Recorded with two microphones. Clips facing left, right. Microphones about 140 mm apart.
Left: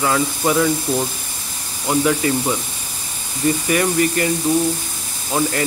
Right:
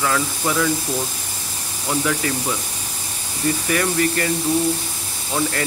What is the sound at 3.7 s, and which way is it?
Speech, 20° left (ahead or behind).